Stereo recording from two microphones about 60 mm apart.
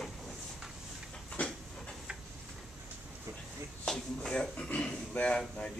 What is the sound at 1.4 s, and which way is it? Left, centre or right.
Train, left.